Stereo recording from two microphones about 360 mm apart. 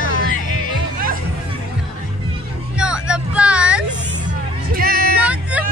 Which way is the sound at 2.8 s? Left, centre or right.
Centre.